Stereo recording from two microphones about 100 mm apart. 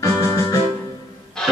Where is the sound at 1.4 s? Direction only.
10° left (ahead or behind).